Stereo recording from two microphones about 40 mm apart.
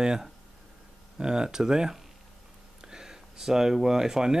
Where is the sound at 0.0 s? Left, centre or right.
Centre.